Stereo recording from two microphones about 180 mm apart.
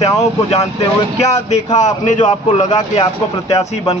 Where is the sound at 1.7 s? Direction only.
40° left (ahead or behind).